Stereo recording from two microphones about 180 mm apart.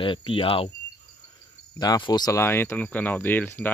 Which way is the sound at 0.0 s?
30° left (ahead or behind).